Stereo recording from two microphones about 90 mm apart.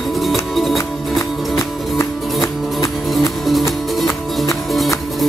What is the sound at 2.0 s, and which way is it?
Music, 35° left (ahead or behind).